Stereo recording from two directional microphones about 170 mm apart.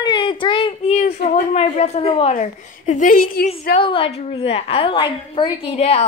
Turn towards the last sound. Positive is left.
turn(degrees=35)  # may be behind; listen again after turning